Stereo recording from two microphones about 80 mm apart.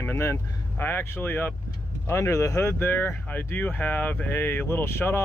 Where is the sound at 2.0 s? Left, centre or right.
Left.